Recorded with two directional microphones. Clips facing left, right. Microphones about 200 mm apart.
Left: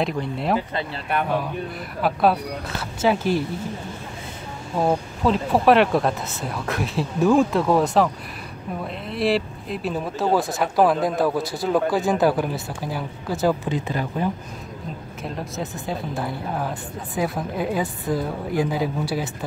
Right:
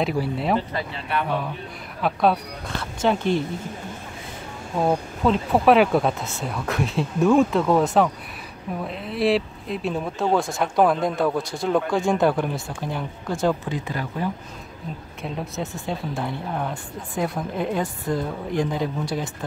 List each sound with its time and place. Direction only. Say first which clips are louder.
0.0 s speech: right 1 dB; centre (ahead or behind)
0.9 s speech: left 2 dB; 50° left (ahead or behind)
2.0 s speech: left 1 dB; 5° left (ahead or behind)
4.7 s speech: even; 5° left (ahead or behind)
13.7 s speech: left 3 dB; 20° left (ahead or behind)
15.2 s speech: even; centre (ahead or behind)